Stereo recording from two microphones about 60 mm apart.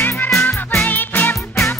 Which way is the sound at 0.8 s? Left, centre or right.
Left.